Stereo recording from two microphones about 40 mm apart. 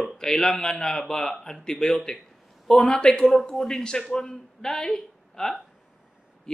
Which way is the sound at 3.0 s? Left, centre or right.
Left.